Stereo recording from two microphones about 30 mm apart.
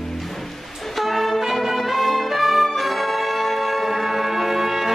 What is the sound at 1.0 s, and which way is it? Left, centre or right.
Music, centre.